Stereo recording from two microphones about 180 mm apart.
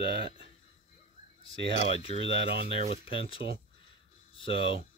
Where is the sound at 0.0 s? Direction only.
30° left (ahead or behind).